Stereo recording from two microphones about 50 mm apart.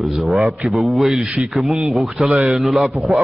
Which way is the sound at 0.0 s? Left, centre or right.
Centre.